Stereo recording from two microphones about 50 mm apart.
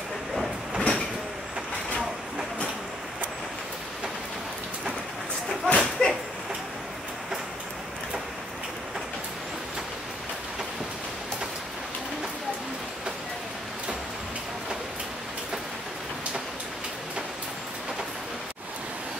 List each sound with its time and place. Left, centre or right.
0.7 s train: centre
2.0 s vehicle: centre
5.7 s a sound: centre